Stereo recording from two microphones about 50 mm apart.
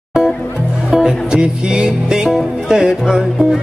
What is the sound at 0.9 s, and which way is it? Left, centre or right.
Music, centre.